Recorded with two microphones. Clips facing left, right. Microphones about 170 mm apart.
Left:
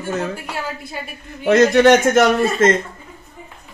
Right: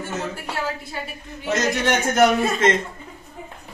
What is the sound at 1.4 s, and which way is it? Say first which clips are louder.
Speech: left 10 dB; 65° left (ahead or behind).